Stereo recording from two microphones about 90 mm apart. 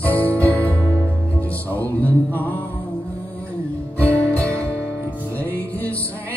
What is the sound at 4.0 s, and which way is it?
Music, 20° left (ahead or behind).